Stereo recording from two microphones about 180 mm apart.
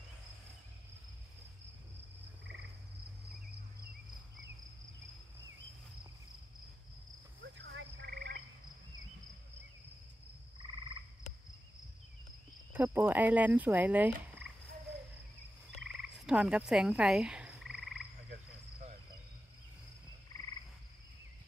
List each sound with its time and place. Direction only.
7.4 s frog: 80° right; by 8.4 s 60° right (ahead or behind)
10.6 s frog: 25° right (ahead or behind)
12.7 s frog: 10° right (ahead or behind)
15.8 s frog: 5° right (ahead or behind)